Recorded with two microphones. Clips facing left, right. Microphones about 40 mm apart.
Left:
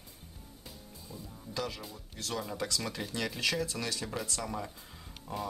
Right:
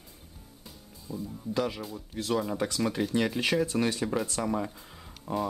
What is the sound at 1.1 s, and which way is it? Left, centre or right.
Speech, right.